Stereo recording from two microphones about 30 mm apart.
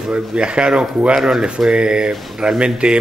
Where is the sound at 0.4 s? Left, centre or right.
Right.